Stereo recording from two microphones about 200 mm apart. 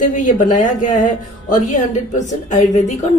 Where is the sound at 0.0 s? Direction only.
40° left (ahead or behind).